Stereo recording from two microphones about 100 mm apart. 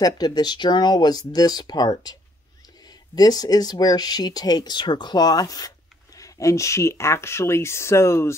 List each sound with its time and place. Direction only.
0.0 s speech: 45° left (ahead or behind)
3.2 s speech: 40° left (ahead or behind)